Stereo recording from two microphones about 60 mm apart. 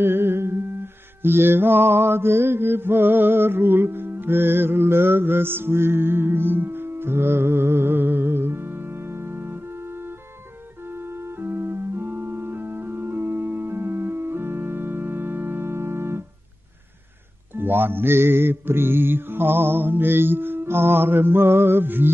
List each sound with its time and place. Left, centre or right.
0.0 s humming: right
1.2 s mantra: right
11.0 s organ: right
17.6 s music: right